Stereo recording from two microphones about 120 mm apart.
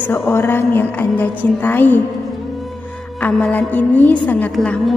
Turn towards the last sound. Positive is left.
turn(degrees=5)  # may be behind; listen again after turning